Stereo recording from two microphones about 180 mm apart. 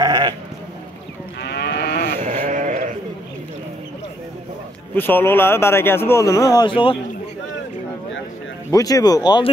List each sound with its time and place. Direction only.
0.0 s sheep: 20° right (ahead or behind)
1.4 s moo: 65° left (ahead or behind)
2.2 s sheep: 45° right (ahead or behind)
4.9 s speech: 10° left (ahead or behind); by 7.0 s 30° left (ahead or behind)
8.6 s speech: 20° left (ahead or behind)